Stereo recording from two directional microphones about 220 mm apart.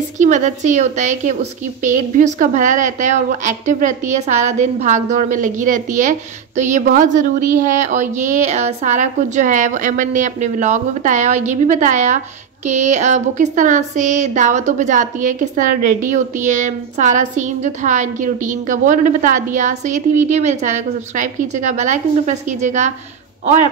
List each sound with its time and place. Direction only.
0.2 s a woman's voice: 35° right (ahead or behind)